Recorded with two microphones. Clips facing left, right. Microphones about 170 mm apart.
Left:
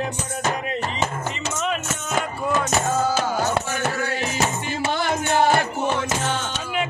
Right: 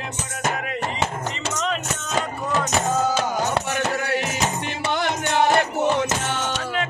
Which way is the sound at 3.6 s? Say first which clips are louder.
Right 1 dB; 65° right (ahead or behind).